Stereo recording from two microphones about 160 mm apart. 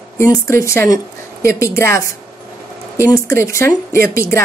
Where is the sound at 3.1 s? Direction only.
15° left (ahead or behind).